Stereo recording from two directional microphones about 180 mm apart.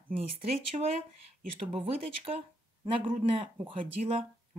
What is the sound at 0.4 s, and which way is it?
Speech, 35° right (ahead or behind).